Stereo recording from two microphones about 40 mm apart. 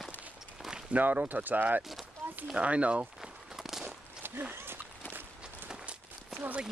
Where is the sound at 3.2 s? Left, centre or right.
Centre.